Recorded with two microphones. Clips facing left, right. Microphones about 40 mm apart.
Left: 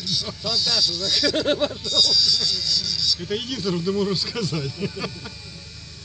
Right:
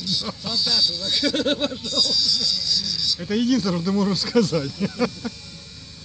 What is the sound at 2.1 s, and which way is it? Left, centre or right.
Speech, left.